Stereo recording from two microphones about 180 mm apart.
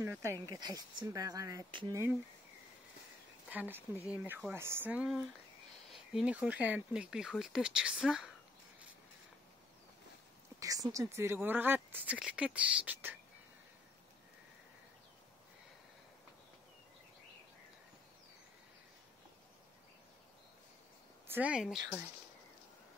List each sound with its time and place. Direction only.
0.0 s speech: 15° right (ahead or behind)
3.4 s a woman's voice: 10° right (ahead or behind)
3.9 s speech: 15° left (ahead or behind)
4.2 s speech: 5° right (ahead or behind)
10.6 s speech: 20° right (ahead or behind)
21.3 s speech: 5° right (ahead or behind)